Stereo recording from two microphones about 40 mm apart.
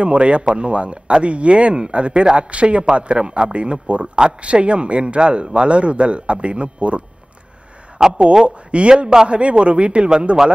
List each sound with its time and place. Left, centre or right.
0.0 s a man's voice: right
8.2 s a man's voice: right